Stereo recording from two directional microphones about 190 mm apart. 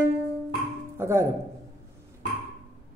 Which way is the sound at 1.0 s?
15° right (ahead or behind).